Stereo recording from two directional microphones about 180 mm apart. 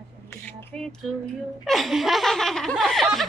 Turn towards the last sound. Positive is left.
turn(degrees=0)  # may be behind; listen again after turning